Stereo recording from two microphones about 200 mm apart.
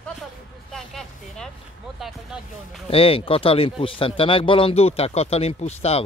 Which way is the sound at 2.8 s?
30° left (ahead or behind).